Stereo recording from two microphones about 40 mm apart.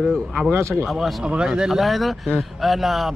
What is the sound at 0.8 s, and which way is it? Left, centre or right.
Speech, centre.